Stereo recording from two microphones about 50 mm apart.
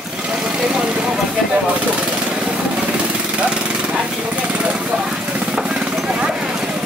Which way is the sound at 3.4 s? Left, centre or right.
Right.